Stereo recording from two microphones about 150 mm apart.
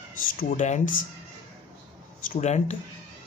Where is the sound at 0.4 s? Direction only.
55° left (ahead or behind).